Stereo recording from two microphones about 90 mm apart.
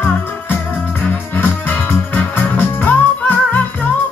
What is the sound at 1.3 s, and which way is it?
Music, 20° left (ahead or behind).